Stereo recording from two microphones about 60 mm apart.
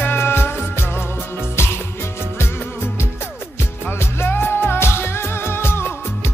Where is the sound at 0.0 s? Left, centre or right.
Left.